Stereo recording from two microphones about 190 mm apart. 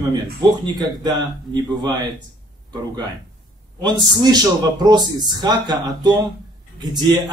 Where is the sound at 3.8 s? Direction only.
20° right (ahead or behind).